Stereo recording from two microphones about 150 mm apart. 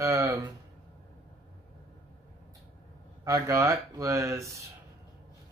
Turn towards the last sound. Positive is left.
turn(degrees=-20)  # may be behind; listen again after turning